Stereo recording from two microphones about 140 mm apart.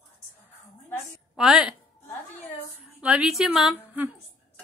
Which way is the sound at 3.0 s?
5° right (ahead or behind).